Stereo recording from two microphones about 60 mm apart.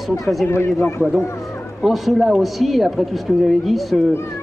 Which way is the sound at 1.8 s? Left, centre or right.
Centre.